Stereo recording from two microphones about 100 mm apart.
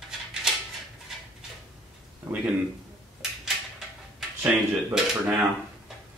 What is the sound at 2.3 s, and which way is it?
Speech, 15° right (ahead or behind).